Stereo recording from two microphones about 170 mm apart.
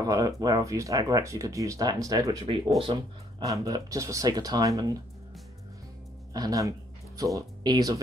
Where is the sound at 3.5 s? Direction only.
20° right (ahead or behind).